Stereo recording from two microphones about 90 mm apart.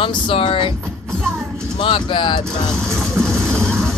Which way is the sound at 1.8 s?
70° left (ahead or behind).